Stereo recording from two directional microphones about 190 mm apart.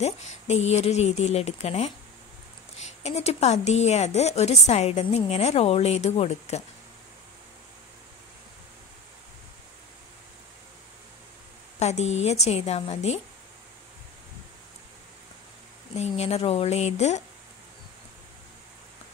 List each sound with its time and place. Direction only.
0.0 s a woman's voice: 35° left (ahead or behind)
11.8 s a woman's voice: 35° left (ahead or behind)
16.0 s a woman's voice: 35° left (ahead or behind)